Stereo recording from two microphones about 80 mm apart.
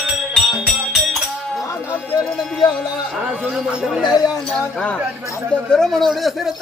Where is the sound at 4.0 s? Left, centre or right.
Left.